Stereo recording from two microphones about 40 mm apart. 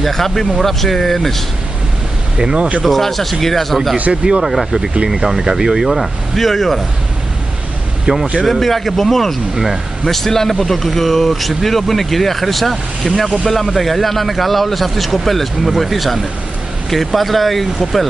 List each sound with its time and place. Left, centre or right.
0.0 s speech: centre
2.5 s speech: right
2.8 s speech: centre
4.1 s speech: right
4.4 s speech: centre
8.1 s speech: right
8.5 s speech: centre